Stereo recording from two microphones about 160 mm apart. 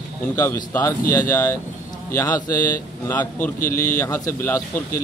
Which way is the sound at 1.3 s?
20° left (ahead or behind).